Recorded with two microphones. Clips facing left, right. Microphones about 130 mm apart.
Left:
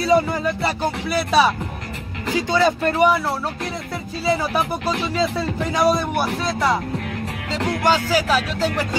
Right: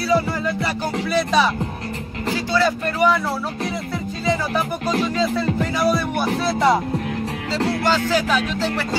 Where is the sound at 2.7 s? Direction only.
30° left (ahead or behind).